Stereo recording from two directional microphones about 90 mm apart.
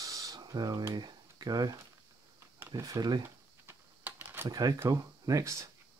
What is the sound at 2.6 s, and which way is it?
Speech, 35° right (ahead or behind).